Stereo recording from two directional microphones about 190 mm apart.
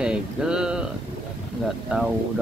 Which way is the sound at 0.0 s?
5° right (ahead or behind).